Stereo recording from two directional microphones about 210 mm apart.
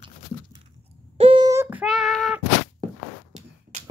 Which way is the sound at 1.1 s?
25° right (ahead or behind).